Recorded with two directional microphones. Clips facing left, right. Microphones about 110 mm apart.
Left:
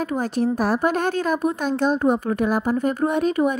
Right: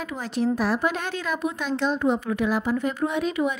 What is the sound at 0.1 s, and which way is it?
A woman's voice, 45° left (ahead or behind).